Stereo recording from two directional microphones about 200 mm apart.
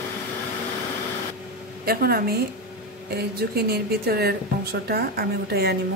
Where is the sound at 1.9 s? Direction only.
50° right (ahead or behind).